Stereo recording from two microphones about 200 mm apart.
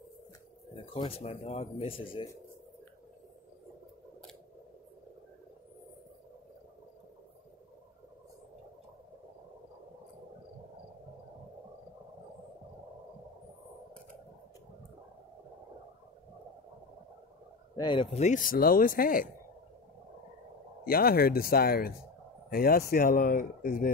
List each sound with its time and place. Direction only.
0.9 s speech: 30° left (ahead or behind)
17.7 s speech: 25° left (ahead or behind); by 19.2 s 45° left (ahead or behind)
20.8 s speech: 50° left (ahead or behind)